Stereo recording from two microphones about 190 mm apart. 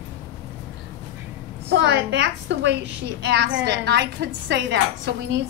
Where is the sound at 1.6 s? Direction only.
65° right (ahead or behind).